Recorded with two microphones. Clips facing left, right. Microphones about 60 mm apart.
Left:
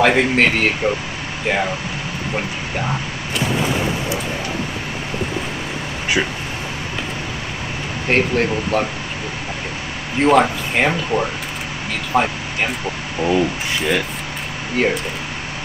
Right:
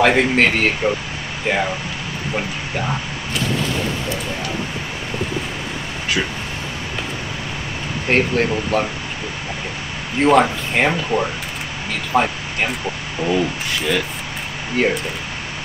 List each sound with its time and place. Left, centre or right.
0.0 s speech: centre
6.2 s speech: left
8.1 s speech: centre
10.1 s speech: centre
13.2 s speech: centre
14.8 s speech: centre